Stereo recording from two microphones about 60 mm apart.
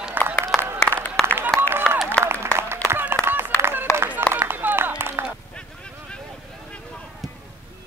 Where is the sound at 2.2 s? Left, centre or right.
Right.